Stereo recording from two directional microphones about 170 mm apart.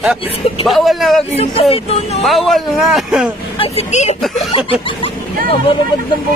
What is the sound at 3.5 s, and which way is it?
Speech, 40° left (ahead or behind).